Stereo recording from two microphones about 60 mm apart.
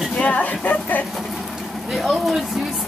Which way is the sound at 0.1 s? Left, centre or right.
Left.